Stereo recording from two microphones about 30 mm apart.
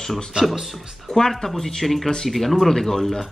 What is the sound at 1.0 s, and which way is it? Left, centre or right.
Speech, centre.